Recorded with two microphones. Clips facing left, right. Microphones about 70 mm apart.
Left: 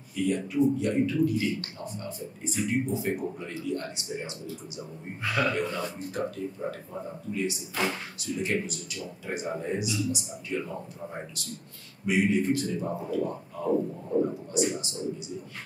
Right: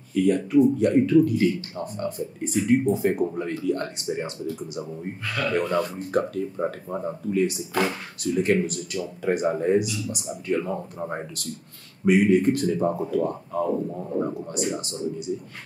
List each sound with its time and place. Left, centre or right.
0.1 s speech: right
5.2 s a man's voice: centre
5.6 s speech: right